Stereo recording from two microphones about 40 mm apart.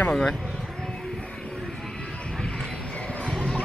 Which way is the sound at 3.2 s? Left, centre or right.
Centre.